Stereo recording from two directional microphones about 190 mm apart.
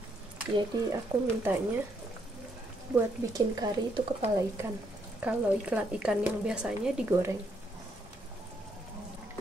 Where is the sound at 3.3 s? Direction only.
20° right (ahead or behind).